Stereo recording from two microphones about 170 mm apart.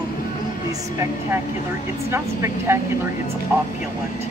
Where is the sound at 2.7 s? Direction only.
15° right (ahead or behind).